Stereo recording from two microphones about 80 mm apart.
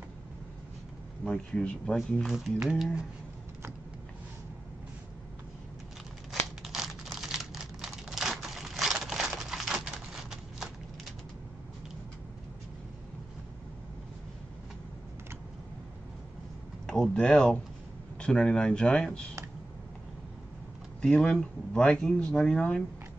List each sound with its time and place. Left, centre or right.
1.2 s speech: centre
2.2 s speech: centre
6.6 s computer keyboard: centre
16.8 s a sound: centre
18.2 s speech: centre
21.0 s speech: centre